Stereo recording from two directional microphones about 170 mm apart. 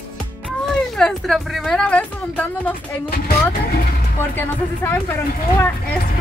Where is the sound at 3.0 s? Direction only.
65° left (ahead or behind).